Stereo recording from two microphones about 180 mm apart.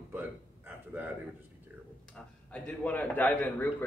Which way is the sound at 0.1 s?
10° right (ahead or behind).